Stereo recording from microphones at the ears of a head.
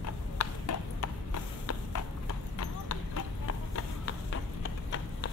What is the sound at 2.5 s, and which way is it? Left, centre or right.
Clip-clop, left.